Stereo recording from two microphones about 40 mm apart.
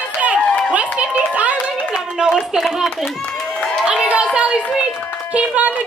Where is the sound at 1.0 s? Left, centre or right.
Right.